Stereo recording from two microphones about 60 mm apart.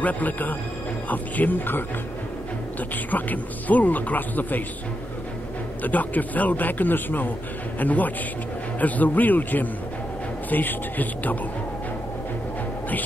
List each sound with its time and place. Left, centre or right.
0.0 s speech: left
3.1 s speech: left
5.9 s speech: left